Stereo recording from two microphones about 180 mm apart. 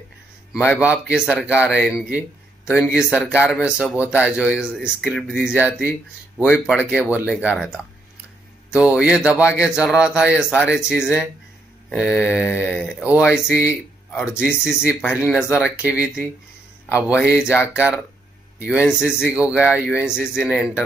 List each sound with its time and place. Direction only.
0.5 s speech: 5° right (ahead or behind)
18.6 s speech: 5° right (ahead or behind)